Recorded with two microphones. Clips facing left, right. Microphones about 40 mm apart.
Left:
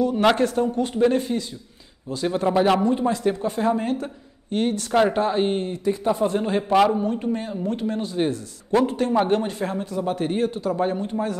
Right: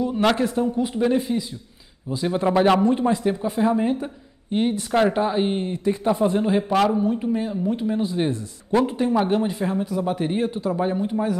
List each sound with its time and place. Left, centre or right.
0.1 s a man's voice: centre
3.4 s a woman's voice: centre
4.9 s a man's voice: centre
5.6 s a woman's voice: centre
6.4 s a man's voice: centre
8.7 s a man's voice: centre
9.3 s a man's voice: centre
10.4 s a man's voice: right
10.8 s a man's voice: centre